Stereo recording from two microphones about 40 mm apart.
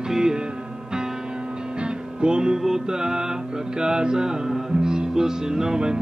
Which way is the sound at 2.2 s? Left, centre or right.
Right.